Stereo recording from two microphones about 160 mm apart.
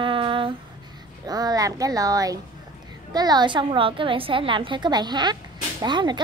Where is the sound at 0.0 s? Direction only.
30° right (ahead or behind).